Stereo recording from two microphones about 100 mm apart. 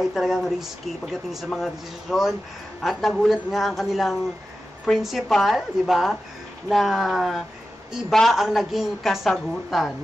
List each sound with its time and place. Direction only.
0.0 s speech: centre (ahead or behind)